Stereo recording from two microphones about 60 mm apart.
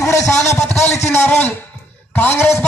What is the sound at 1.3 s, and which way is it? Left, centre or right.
A woman's voice, left.